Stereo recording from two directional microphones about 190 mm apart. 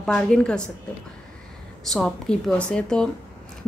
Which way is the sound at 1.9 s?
5° left (ahead or behind).